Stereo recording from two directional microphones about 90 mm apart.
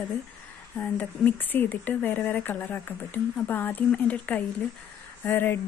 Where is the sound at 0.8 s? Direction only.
20° left (ahead or behind).